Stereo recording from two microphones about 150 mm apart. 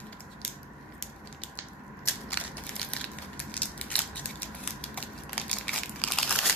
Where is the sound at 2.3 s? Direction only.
10° left (ahead or behind).